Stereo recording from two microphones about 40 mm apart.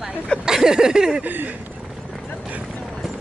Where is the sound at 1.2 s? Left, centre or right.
Right.